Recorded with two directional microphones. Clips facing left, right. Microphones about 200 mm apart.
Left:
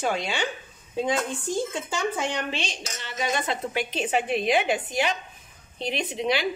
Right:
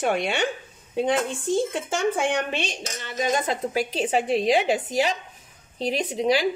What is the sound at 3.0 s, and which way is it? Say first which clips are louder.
Speech: right 4 dB; 45° right (ahead or behind).